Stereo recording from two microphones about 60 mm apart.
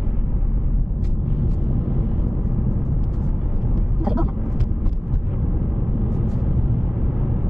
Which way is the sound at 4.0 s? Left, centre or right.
Centre.